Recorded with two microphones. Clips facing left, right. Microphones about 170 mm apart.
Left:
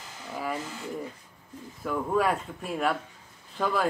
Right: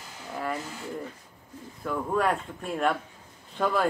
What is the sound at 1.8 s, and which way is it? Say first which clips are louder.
Speech: left 1 dB; 5° left (ahead or behind).